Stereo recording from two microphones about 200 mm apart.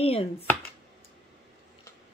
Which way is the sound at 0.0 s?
30° left (ahead or behind).